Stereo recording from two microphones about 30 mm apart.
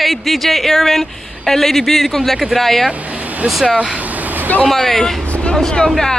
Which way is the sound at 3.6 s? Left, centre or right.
Right.